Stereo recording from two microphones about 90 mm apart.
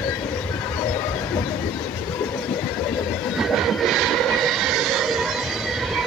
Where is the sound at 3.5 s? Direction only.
Centre (ahead or behind).